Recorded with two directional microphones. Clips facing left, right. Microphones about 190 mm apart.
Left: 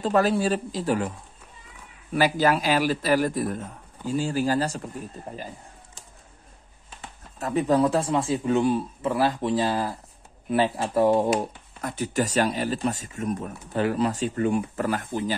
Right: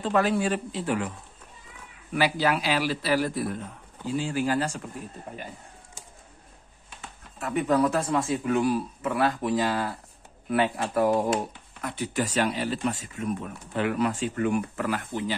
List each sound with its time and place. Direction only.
0.0 s speech: 40° left (ahead or behind)
2.1 s a man's voice: 45° left (ahead or behind)
7.3 s a man's voice: 35° left (ahead or behind)
11.8 s speech: 45° left (ahead or behind)